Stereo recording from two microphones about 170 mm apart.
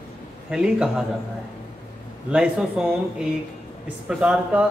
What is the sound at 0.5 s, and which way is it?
Speech, 5° right (ahead or behind).